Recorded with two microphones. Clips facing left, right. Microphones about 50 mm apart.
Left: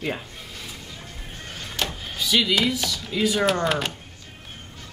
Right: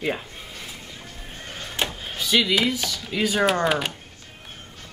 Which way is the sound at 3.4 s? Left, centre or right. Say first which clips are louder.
Right 1 dB; centre.